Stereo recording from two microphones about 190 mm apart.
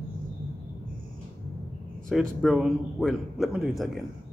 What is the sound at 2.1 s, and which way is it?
Speech, centre (ahead or behind).